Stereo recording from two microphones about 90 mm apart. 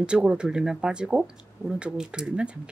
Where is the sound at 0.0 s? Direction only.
10° right (ahead or behind).